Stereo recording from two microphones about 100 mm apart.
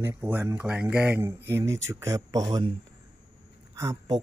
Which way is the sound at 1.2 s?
25° right (ahead or behind).